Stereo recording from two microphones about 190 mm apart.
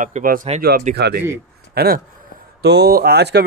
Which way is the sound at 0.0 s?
45° right (ahead or behind).